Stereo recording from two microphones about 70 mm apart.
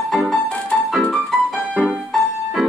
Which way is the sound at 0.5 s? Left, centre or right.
Centre.